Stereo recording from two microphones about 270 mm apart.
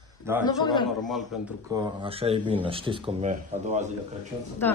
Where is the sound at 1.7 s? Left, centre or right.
Centre.